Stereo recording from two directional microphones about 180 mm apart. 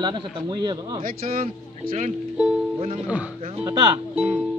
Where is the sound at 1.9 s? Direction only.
40° right (ahead or behind).